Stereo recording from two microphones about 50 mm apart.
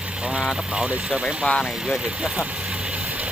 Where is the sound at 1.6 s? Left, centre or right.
Centre.